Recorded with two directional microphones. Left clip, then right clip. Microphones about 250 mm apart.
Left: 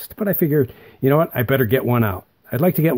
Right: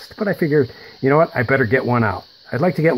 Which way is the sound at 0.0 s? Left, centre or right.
Left.